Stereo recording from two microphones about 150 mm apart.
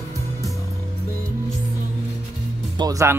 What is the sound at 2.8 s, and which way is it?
Speech, 20° right (ahead or behind).